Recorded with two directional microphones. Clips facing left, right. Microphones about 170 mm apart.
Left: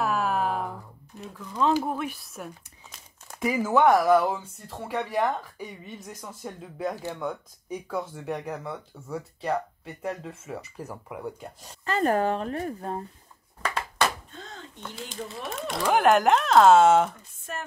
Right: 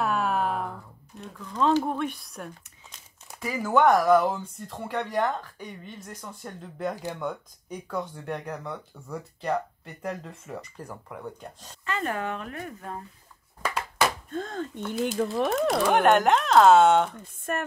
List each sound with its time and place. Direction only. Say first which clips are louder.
0.0 s a sound: even; centre (ahead or behind)
3.3 s speech: left 1 dB; 10° left (ahead or behind)
11.8 s speech: left 6 dB; 40° left (ahead or behind)
13.6 s a sound: even; 10° right (ahead or behind)
14.3 s speech: right 11 dB; 50° right (ahead or behind)
15.2 s speech: right 7 dB; 60° right (ahead or behind)
15.8 s speech: left 2 dB; centre (ahead or behind)
17.5 s speech: right 6 dB; 55° right (ahead or behind)